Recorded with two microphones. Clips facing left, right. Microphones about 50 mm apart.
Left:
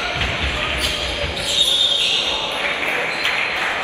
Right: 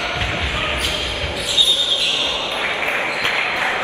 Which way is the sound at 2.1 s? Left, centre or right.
Right.